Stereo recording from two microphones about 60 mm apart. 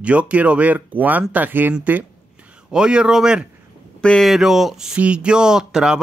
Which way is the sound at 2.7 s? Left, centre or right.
Centre.